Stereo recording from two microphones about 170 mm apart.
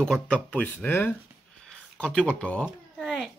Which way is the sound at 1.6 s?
5° left (ahead or behind).